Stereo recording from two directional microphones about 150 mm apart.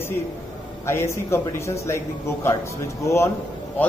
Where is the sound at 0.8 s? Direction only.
15° left (ahead or behind).